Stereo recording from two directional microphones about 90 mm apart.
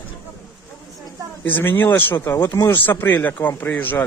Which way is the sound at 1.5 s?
20° left (ahead or behind).